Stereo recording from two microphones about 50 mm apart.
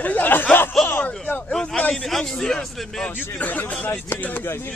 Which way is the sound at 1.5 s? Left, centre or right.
Centre.